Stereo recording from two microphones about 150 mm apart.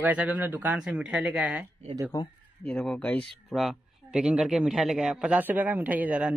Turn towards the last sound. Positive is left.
turn(degrees=-10)  # may be behind; listen again after turning